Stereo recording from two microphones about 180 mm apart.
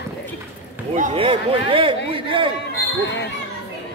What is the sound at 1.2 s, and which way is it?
Speech, 30° right (ahead or behind).